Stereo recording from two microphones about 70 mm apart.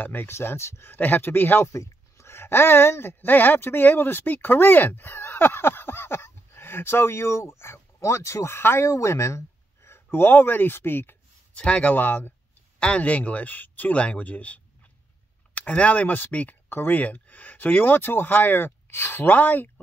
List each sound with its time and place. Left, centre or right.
0.0 s speech: left
1.7 s speech: left
11.5 s speech: centre
12.7 s speech: centre